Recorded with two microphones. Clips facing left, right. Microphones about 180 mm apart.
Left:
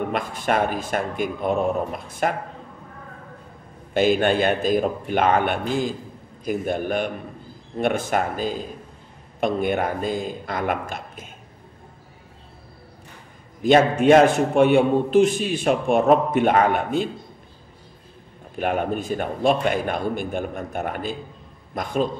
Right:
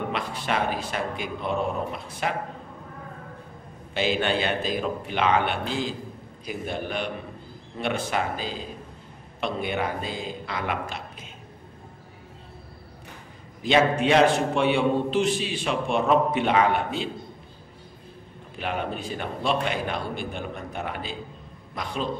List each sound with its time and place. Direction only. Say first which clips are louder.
0.1 s a man's voice: left 5 dB; 50° left (ahead or behind)
3.9 s a man's voice: left 6 dB; 50° left (ahead or behind)
13.6 s a man's voice: left 5 dB; 50° left (ahead or behind)
18.6 s a man's voice: left 6 dB; 50° left (ahead or behind)